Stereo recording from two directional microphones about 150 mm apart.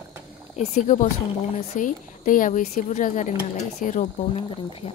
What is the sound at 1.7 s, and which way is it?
A woman's voice, 60° left (ahead or behind).